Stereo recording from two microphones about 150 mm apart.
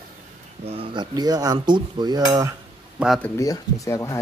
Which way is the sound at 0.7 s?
35° right (ahead or behind).